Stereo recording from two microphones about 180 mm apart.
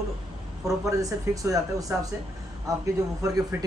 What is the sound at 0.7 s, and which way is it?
A man's voice, 20° right (ahead or behind).